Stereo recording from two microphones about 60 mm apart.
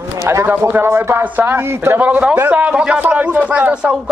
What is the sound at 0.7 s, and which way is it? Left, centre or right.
Speech, right.